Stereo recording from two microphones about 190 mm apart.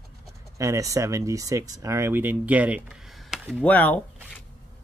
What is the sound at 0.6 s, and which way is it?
Speech, 15° right (ahead or behind).